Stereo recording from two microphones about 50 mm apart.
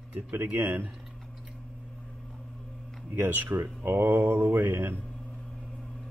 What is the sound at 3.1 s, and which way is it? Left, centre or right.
Speech, right.